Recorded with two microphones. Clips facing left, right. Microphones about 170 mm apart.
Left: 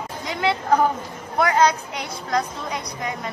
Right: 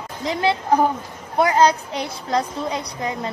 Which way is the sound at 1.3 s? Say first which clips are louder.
Right 2 dB; 30° right (ahead or behind).